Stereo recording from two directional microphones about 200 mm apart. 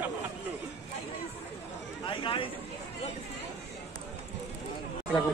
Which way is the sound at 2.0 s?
25° left (ahead or behind).